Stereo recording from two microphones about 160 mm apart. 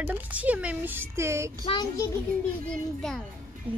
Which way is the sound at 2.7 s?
5° left (ahead or behind).